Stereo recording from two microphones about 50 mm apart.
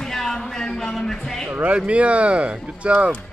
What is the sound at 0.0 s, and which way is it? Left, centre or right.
Music, centre.